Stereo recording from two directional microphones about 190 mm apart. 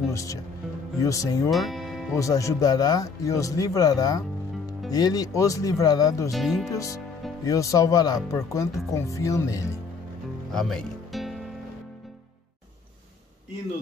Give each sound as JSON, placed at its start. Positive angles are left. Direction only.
{"t": 0.1, "sound": "speech", "side_deg": 15}
{"t": 1.5, "sound": "music", "side_deg": 0}
{"t": 2.1, "sound": "speech", "side_deg": 15}
{"t": 6.3, "sound": "speech", "side_deg": 0}
{"t": 6.7, "sound": "speech", "side_deg": 15}
{"t": 10.5, "sound": "music", "side_deg": 0}